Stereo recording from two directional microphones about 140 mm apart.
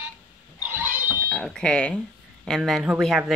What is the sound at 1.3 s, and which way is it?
Speech, 5° left (ahead or behind).